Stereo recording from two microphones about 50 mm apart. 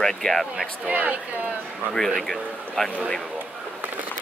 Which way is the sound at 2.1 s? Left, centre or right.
Centre.